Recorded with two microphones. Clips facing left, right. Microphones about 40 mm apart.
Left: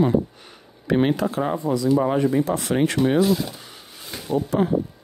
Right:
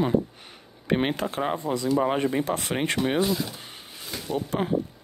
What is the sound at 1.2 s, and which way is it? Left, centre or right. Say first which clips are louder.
Speech: left 4 dB; right.